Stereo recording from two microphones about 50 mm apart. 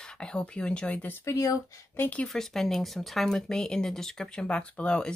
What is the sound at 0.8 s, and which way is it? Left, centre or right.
Speech, left.